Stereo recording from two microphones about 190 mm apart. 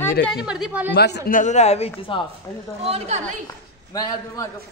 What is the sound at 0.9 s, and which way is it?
A man's voice, 60° left (ahead or behind).